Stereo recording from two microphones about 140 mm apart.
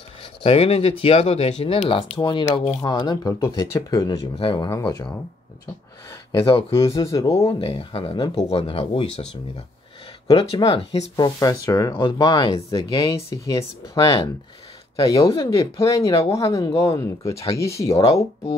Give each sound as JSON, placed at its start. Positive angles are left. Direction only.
{"t": 0.2, "sound": "speech", "side_deg": 45}
{"t": 4.4, "sound": "speech", "side_deg": 40}
{"t": 4.6, "sound": "speech", "side_deg": 25}
{"t": 6.3, "sound": "speech", "side_deg": 40}
{"t": 6.7, "sound": "speech", "side_deg": 20}
{"t": 7.6, "sound": "speech", "side_deg": 40}
{"t": 13.3, "sound": "speech", "side_deg": 25}
{"t": 15.2, "sound": "speech", "side_deg": 40}
{"t": 15.8, "sound": "speech", "side_deg": 20}
{"t": 17.9, "sound": "speech", "side_deg": 45}